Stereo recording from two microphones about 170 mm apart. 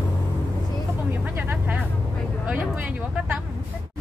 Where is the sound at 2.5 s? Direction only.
10° right (ahead or behind).